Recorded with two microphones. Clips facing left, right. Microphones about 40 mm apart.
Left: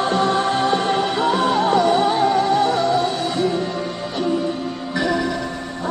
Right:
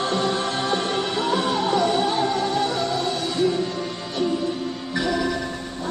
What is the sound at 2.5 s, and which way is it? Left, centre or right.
Music, left.